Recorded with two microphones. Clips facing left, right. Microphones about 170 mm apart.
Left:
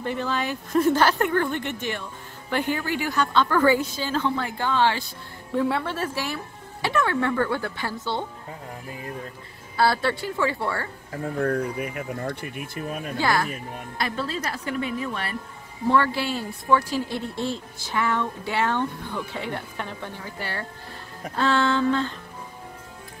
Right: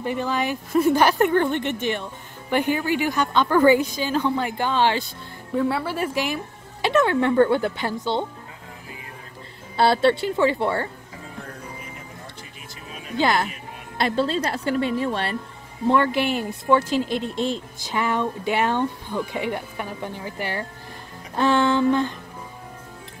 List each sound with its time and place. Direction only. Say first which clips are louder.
0.0 s speech: right 3 dB; 15° right (ahead or behind)
5.5 s speech: right 1 dB; centre (ahead or behind)
5.9 s speech: right 4 dB; 15° right (ahead or behind)
9.8 s speech: right 4 dB; 25° right (ahead or behind)
11.1 s speech: left 13 dB; 60° left (ahead or behind)
13.2 s speech: right 3 dB; 20° right (ahead or behind)
15.9 s speech: right 2 dB; 20° right (ahead or behind)